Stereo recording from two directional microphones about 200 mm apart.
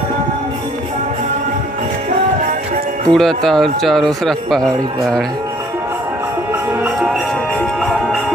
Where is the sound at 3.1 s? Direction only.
Centre (ahead or behind).